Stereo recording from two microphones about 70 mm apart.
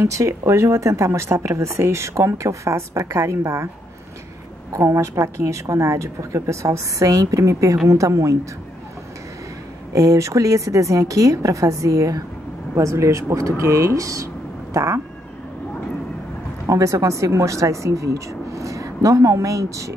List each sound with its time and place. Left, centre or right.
0.0 s speech: right
4.7 s speech: right
9.9 s speech: right
13.6 s a sound: right
16.6 s speech: right